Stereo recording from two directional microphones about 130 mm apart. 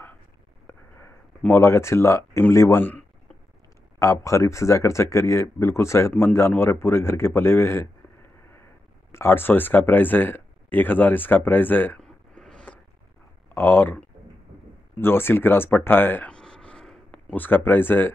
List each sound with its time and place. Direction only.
0.7 s speech: 20° left (ahead or behind)
4.0 s speech: 25° left (ahead or behind)
9.1 s speech: 15° left (ahead or behind)
12.0 s a sound: 5° left (ahead or behind)
13.6 s speech: 15° left (ahead or behind)